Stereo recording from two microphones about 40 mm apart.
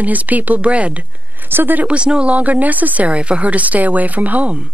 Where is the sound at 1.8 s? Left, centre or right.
Right.